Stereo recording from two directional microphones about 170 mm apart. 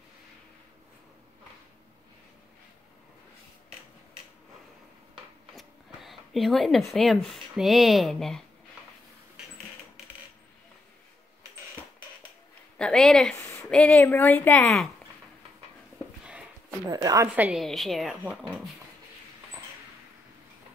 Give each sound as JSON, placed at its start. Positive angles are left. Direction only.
{"t": 5.5, "sound": "speech", "side_deg": 0}
{"t": 12.7, "sound": "a woman's voice", "side_deg": 5}
{"t": 16.9, "sound": "a woman's voice", "side_deg": -20}
{"t": 17.4, "sound": "speech", "side_deg": -5}